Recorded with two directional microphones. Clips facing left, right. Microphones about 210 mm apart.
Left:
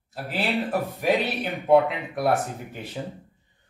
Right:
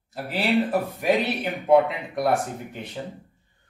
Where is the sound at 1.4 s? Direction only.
Centre (ahead or behind).